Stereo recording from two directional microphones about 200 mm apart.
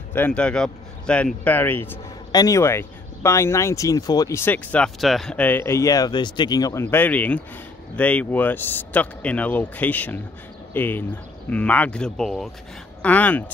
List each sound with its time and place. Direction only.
0.1 s speech: 5° left (ahead or behind)